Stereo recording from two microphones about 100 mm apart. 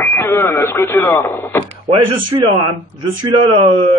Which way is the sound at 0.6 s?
30° left (ahead or behind).